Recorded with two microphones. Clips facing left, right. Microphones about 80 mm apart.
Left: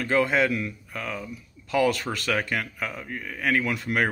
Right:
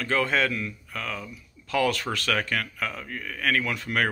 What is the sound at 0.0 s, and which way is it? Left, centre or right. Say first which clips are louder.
Speech: left 2 dB; centre.